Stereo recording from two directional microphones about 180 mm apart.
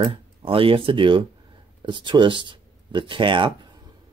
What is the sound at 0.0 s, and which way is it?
Speech, 30° right (ahead or behind).